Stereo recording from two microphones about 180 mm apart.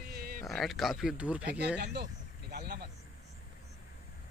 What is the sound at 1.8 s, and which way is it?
Speech, 70° right (ahead or behind).